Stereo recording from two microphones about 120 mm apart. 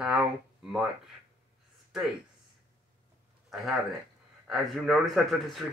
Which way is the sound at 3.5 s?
5° right (ahead or behind).